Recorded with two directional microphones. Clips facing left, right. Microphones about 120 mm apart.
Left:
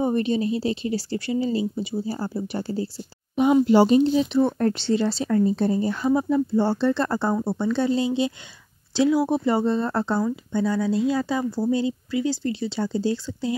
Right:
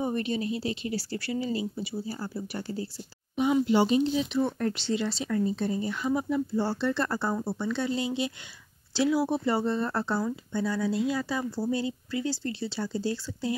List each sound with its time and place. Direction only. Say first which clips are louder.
0.0 s speech: left 7 dB; 25° left (ahead or behind)